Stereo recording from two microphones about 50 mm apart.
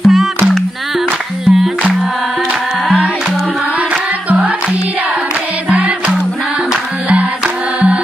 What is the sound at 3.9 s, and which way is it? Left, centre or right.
Music, right.